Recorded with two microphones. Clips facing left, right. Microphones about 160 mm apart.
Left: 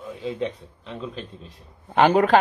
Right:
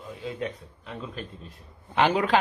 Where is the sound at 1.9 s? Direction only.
50° left (ahead or behind).